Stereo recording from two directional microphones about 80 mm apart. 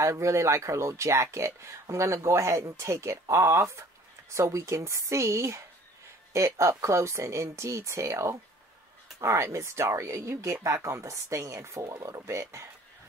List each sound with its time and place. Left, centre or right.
0.0 s speech: right